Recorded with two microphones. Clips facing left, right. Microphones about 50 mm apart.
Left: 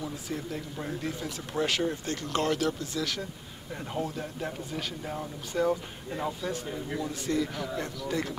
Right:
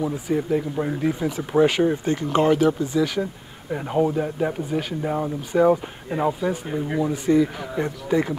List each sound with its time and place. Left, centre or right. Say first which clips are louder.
0.0 s speech: right 11 dB; centre
3.7 s speech: right 12 dB; right
6.0 s speech: right 10 dB; right
7.1 s speech: right 11 dB; centre